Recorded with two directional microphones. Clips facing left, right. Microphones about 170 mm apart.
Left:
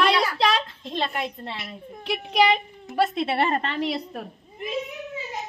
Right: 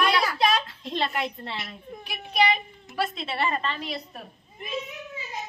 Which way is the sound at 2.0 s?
90° left.